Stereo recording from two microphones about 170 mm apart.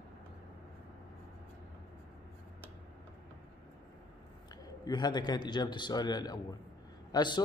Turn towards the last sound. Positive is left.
turn(degrees=25)  # may be behind; listen again after turning